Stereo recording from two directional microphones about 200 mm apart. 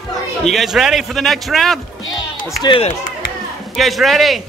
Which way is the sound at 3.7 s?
Centre (ahead or behind).